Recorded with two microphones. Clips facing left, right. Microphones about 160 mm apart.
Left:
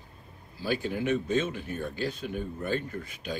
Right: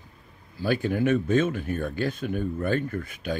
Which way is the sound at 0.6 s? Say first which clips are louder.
Right 5 dB; 55° right (ahead or behind).